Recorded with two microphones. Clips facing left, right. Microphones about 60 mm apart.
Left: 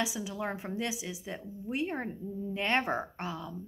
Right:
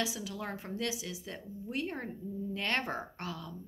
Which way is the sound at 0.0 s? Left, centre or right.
Centre.